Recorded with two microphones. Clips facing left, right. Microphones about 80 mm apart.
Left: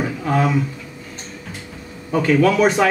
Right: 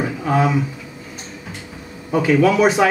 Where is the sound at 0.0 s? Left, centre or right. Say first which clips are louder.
Right 1 dB; centre.